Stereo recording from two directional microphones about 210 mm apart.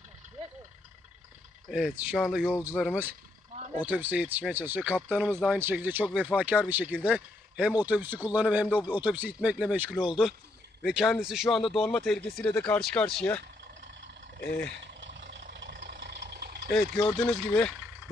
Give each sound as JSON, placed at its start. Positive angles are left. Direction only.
{"t": 1.7, "sound": "speech", "side_deg": -5}
{"t": 15.5, "sound": "vehicle", "side_deg": -55}
{"t": 17.3, "sound": "speech", "side_deg": 5}